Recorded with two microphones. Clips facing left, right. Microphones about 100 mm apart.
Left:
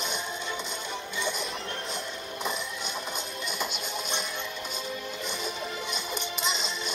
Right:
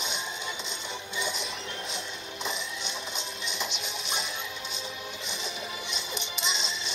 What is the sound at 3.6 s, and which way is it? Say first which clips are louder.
Music: left 3 dB; 50° left (ahead or behind).